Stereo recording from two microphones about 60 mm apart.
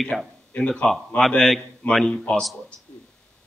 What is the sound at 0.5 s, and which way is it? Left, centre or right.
A man's voice, centre.